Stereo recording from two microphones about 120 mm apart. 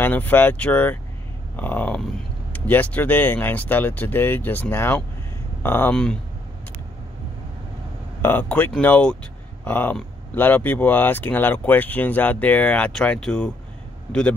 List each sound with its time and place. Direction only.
0.0 s speech: 15° left (ahead or behind)
1.6 s a sound: 15° left (ahead or behind)
2.5 s speech: 15° left (ahead or behind)
8.2 s speech: 15° left (ahead or behind)